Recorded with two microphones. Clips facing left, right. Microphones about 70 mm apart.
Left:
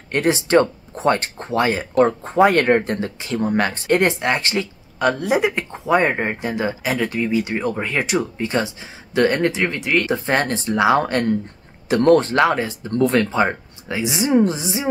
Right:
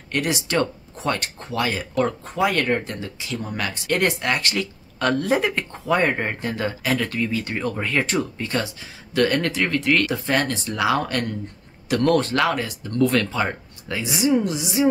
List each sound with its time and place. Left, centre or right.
0.1 s speech: left
4.9 s speech: centre; by 14.8 s left